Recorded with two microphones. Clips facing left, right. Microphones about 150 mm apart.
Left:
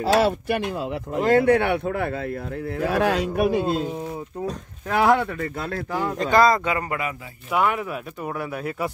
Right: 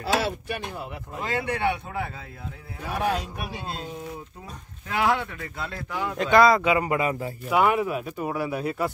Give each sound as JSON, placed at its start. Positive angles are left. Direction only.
{"t": 0.2, "sound": "speech", "side_deg": 70}
{"t": 2.8, "sound": "speech", "side_deg": 90}
{"t": 3.4, "sound": "speech", "side_deg": 55}
{"t": 4.8, "sound": "speech", "side_deg": 50}
{"t": 6.3, "sound": "speech", "side_deg": 0}
{"t": 6.6, "sound": "speech", "side_deg": -15}